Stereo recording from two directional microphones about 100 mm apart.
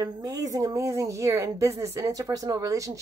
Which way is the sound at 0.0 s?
40° right (ahead or behind).